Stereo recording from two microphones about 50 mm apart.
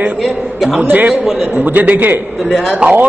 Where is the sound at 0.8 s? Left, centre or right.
Right.